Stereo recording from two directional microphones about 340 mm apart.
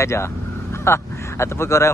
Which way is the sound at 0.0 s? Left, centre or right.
Centre.